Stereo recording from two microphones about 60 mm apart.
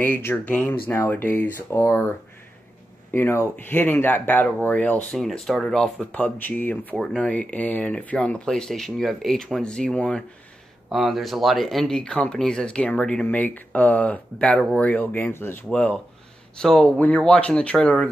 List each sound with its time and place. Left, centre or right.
0.0 s speech: left
3.1 s speech: left
5.1 s speech: centre
5.9 s speech: left
10.9 s speech: centre
13.3 s speech: left
15.7 s speech: centre
16.5 s speech: centre